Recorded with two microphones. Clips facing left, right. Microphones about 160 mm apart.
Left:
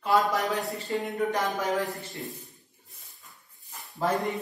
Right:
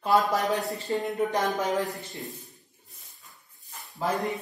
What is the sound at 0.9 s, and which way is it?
Speech, centre (ahead or behind).